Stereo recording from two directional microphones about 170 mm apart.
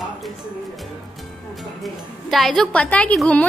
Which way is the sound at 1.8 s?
Centre (ahead or behind).